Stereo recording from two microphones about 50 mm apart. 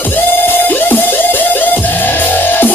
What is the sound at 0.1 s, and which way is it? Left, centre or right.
Music, left.